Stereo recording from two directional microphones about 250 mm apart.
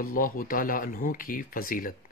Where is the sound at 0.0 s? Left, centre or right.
Left.